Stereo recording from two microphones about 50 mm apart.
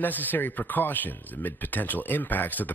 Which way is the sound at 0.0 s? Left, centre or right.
Left.